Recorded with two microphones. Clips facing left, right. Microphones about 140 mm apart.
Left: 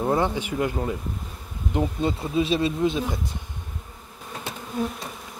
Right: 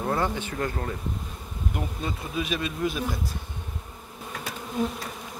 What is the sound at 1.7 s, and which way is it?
Speech, 25° left (ahead or behind).